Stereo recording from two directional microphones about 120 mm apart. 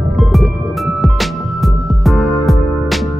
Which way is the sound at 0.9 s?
Centre (ahead or behind).